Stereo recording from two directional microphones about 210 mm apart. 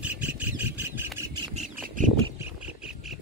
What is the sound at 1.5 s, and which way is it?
Squawk, 35° right (ahead or behind).